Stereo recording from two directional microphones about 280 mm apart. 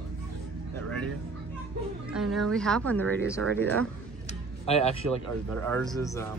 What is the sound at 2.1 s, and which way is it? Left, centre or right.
Speech, centre.